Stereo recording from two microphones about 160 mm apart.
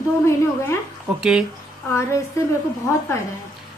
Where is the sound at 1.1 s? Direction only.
5° right (ahead or behind).